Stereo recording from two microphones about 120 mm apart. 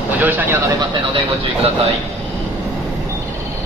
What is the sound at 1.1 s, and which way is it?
Speech, 50° right (ahead or behind).